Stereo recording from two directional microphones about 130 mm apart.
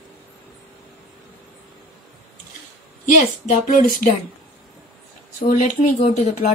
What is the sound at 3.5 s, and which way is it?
Speech, 85° left.